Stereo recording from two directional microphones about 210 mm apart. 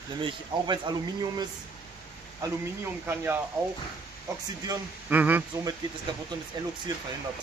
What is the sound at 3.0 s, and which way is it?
Speech, 10° right (ahead or behind).